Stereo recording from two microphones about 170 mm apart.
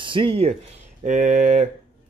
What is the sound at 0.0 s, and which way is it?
Speech, 30° right (ahead or behind).